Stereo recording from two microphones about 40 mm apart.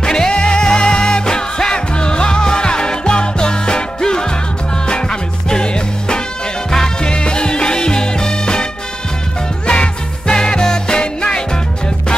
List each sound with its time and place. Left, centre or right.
0.0 s music: centre
5.5 s music: left
9.7 s music: left